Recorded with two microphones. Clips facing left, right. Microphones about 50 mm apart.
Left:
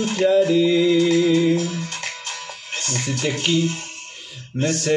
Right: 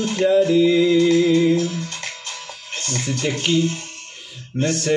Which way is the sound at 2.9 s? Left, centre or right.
Centre.